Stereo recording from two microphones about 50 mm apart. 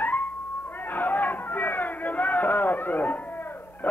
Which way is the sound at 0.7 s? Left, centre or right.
Left.